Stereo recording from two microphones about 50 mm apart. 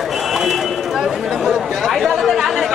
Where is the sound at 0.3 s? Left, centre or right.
Centre.